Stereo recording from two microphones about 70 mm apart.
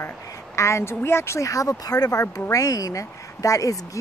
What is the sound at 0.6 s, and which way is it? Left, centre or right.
A woman's voice, left.